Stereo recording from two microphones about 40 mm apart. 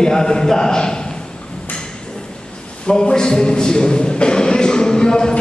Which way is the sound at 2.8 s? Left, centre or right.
Centre.